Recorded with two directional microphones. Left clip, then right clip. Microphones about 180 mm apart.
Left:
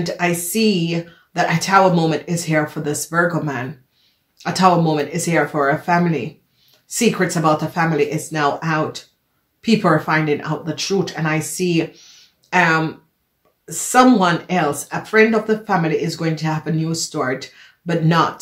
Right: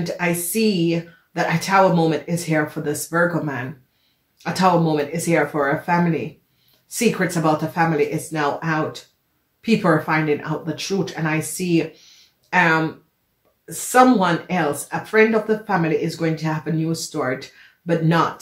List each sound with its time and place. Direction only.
0.0 s speech: 30° left (ahead or behind)